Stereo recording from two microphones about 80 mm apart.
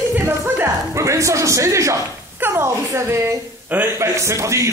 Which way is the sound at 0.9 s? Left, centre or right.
Right.